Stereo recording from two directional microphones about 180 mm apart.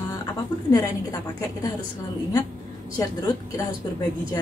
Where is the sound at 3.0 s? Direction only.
20° left (ahead or behind).